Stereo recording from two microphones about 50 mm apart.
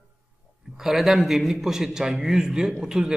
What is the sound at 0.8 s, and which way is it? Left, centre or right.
A man's voice, centre.